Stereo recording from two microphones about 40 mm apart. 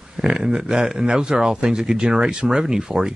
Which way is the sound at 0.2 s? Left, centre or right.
Centre.